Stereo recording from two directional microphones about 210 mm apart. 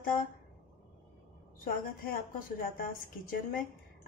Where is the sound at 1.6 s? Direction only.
45° left (ahead or behind).